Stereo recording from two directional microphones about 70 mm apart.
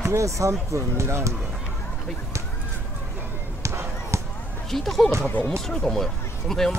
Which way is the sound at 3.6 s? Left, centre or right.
Right.